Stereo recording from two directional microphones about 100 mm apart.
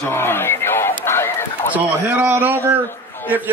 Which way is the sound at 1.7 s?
20° right (ahead or behind).